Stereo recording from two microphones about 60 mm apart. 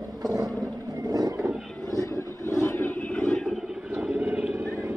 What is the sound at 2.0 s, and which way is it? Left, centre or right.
Vehicle, left.